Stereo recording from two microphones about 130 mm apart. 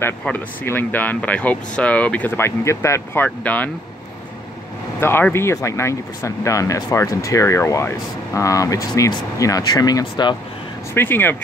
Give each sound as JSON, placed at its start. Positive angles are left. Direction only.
{"t": 0.2, "sound": "speech", "side_deg": 15}
{"t": 5.0, "sound": "speech", "side_deg": 15}
{"t": 11.0, "sound": "speech", "side_deg": 15}